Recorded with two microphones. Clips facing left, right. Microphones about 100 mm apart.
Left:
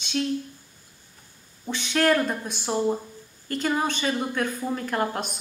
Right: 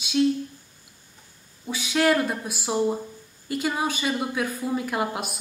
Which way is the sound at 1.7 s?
5° right (ahead or behind).